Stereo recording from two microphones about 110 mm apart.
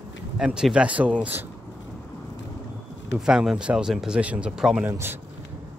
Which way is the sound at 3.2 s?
5° right (ahead or behind).